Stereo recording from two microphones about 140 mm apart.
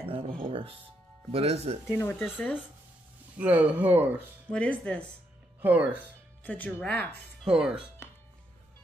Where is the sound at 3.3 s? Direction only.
10° right (ahead or behind).